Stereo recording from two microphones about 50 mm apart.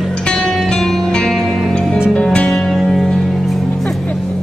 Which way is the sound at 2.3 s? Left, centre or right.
Centre.